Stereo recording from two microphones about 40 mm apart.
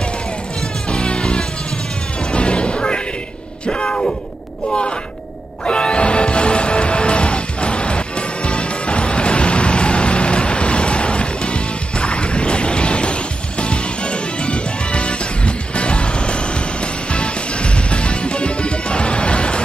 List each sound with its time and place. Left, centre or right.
0.8 s music: left
3.6 s bellow: left
5.7 s music: left